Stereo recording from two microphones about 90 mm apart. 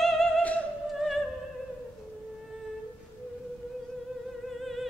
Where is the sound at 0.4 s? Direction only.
15° left (ahead or behind).